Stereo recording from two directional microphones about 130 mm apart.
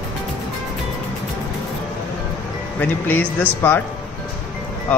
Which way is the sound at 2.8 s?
15° left (ahead or behind).